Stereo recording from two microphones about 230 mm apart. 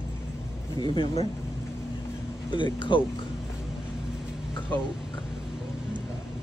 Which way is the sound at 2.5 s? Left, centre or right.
Left.